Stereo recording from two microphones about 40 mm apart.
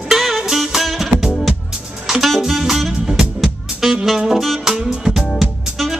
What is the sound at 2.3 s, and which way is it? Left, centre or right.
Saxophone, centre.